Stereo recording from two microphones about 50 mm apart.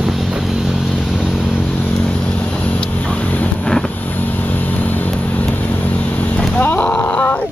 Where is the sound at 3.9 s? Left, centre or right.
Left.